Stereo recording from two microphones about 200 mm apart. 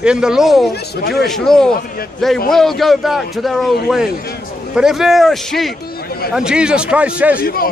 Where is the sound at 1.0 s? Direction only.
55° left (ahead or behind).